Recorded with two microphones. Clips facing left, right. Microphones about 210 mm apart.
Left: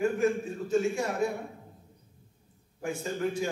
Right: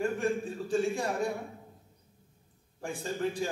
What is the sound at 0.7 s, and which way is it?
Speech, 35° right (ahead or behind).